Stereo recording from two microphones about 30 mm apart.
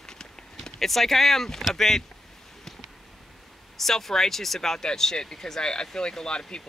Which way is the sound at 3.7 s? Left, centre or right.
Centre.